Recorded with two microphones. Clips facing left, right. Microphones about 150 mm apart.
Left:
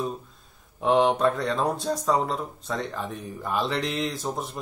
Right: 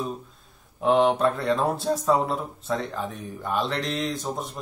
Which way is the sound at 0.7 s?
Centre (ahead or behind).